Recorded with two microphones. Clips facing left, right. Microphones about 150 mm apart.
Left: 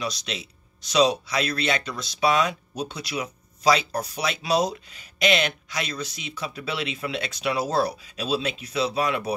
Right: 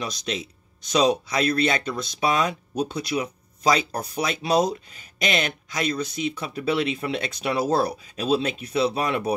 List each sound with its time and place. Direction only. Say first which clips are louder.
0.0 s speech: right 2 dB; 50° right (ahead or behind)